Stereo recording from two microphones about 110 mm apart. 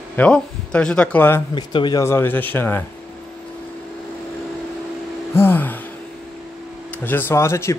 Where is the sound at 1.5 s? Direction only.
45° left (ahead or behind).